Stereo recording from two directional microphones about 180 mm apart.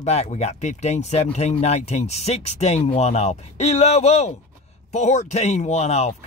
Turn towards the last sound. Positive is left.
turn(degrees=35)  # may be behind; listen again after turning